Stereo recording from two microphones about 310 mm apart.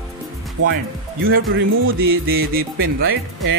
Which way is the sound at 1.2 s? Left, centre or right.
Right.